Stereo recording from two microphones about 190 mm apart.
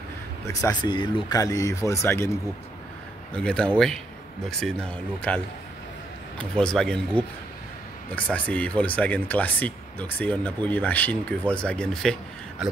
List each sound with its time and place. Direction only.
0.5 s speech: 20° left (ahead or behind)
3.3 s speech: 5° left (ahead or behind)